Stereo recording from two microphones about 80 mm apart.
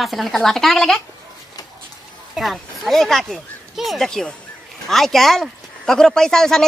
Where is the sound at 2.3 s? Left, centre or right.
Centre.